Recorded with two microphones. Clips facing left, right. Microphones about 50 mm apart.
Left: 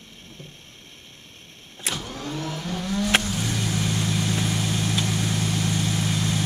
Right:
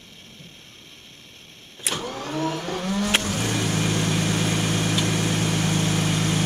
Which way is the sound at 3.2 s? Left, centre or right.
Right.